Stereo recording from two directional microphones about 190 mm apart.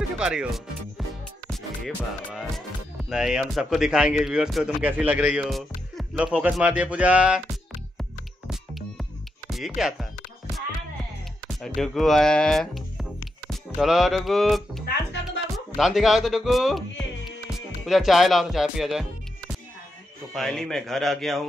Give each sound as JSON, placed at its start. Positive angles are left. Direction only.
{"t": 0.2, "sound": "speech", "side_deg": -5}
{"t": 3.1, "sound": "speech", "side_deg": -5}
{"t": 8.0, "sound": "music", "side_deg": 0}
{"t": 9.5, "sound": "speech", "side_deg": 0}
{"t": 11.6, "sound": "speech", "side_deg": 0}
{"t": 20.3, "sound": "speech", "side_deg": 0}